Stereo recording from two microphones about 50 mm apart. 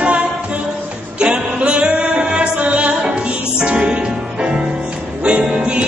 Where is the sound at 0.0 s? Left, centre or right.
Right.